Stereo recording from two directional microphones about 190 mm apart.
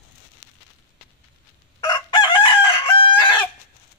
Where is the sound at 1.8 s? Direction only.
25° left (ahead or behind).